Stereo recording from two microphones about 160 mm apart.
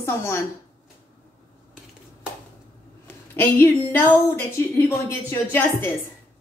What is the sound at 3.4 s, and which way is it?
A woman's voice, 15° left (ahead or behind).